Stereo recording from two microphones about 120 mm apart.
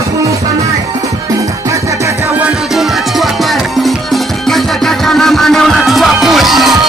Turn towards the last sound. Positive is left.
turn(degrees=0)  # may be behind; listen again after turning